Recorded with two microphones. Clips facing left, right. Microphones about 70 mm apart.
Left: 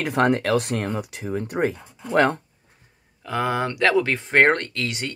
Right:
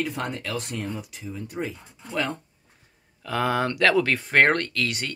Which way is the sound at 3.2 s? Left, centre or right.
Centre.